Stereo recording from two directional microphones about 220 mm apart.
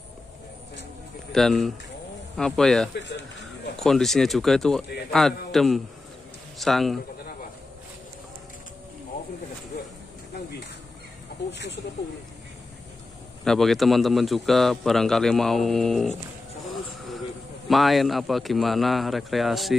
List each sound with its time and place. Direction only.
1.3 s a man's voice: centre (ahead or behind)
11.5 s speech: 50° left (ahead or behind)
13.4 s a man's voice: centre (ahead or behind)
17.6 s a man's voice: centre (ahead or behind)